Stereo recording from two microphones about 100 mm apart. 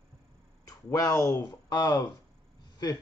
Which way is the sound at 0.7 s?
35° left (ahead or behind).